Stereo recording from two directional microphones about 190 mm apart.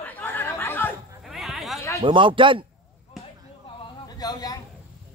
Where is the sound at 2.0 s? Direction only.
25° right (ahead or behind).